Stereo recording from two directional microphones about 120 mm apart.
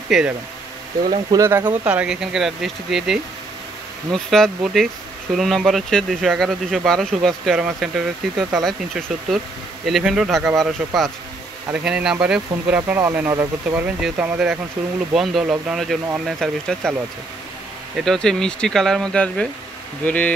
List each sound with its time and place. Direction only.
0.1 s speech: centre (ahead or behind)
1.3 s speech: 25° right (ahead or behind)
1.9 s speech: 5° right (ahead or behind)
11.7 s speech: 5° right (ahead or behind)
15.1 s speech: centre (ahead or behind)
17.9 s speech: 5° left (ahead or behind)